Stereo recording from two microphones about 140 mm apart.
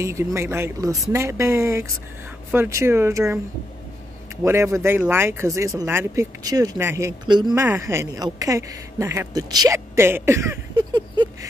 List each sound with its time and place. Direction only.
0.0 s speech: 20° right (ahead or behind)
4.5 s speech: 20° right (ahead or behind)
7.2 s speech: 30° right (ahead or behind)
7.5 s a woman's voice: 20° right (ahead or behind)